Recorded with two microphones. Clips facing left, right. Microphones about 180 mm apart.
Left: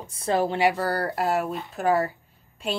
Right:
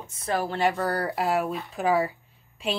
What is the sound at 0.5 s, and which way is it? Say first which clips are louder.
Speech: left 2 dB; 10° left (ahead or behind).